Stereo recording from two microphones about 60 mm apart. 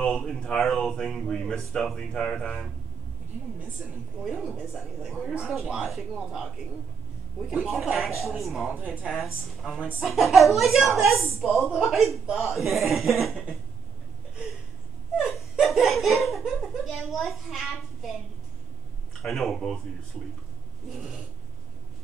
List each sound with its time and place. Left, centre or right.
0.3 s speech: centre
3.8 s speech: centre
15.1 s laughter: centre
19.2 s speech: centre
20.9 s speech: centre